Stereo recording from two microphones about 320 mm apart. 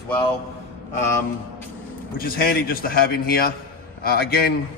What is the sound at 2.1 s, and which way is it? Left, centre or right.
A man's voice, left.